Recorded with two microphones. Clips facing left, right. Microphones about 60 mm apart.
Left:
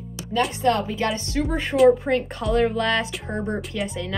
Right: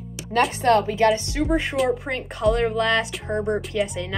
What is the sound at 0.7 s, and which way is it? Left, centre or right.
Music, right.